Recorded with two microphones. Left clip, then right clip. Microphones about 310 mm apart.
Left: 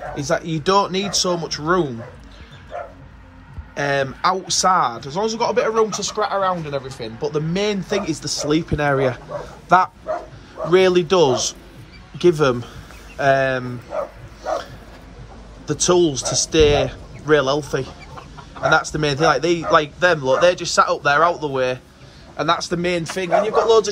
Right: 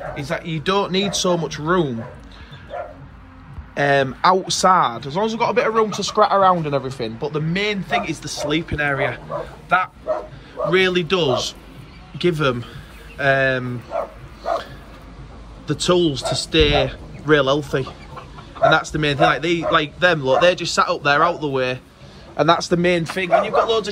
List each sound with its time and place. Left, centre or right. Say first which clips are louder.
0.1 s a man's voice: left 8 dB; centre
3.7 s a man's voice: right 3 dB; centre
10.7 s a man's voice: left 3 dB; centre
15.6 s a man's voice: left 1 dB; centre
23.2 s a man's voice: even; left
23.5 s a man's voice: left 3 dB; centre